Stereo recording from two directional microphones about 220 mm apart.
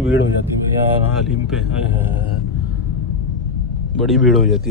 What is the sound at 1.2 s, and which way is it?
A man's voice, 5° right (ahead or behind).